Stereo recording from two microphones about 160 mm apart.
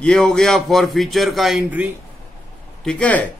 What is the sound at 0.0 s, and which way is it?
A man's voice, 5° left (ahead or behind).